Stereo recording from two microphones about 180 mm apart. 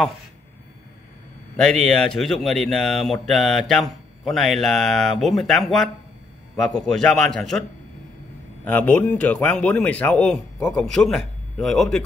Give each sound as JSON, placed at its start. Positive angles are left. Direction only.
{"t": 1.6, "sound": "a man's voice", "side_deg": 5}
{"t": 8.6, "sound": "speech", "side_deg": 10}